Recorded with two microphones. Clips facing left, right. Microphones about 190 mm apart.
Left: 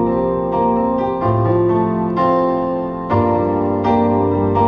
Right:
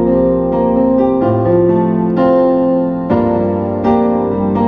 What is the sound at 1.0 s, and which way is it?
Music, 55° right (ahead or behind).